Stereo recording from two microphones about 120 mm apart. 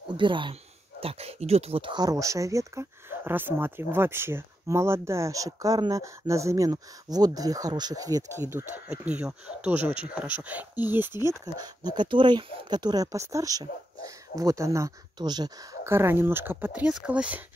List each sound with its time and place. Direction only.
0.2 s speech: 45° right (ahead or behind)
1.0 s speech: 60° right (ahead or behind); by 8.3 s 30° right (ahead or behind)
8.4 s speech: 20° right (ahead or behind)
11.5 s speech: 35° right (ahead or behind)
15.1 s speech: 35° right (ahead or behind)
15.8 s speech: 20° right (ahead or behind)